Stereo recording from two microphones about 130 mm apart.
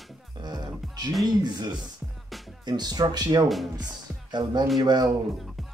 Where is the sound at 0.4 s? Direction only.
30° right (ahead or behind).